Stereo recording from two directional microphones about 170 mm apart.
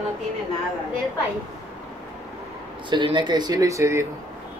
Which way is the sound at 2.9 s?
25° right (ahead or behind).